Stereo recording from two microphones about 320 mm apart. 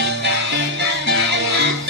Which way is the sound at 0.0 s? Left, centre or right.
Right.